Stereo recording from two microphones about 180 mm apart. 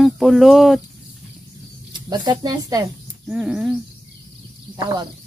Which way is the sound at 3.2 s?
5° right (ahead or behind).